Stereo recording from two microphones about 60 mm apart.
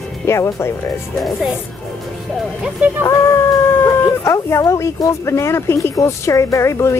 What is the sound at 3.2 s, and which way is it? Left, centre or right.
Howl, left.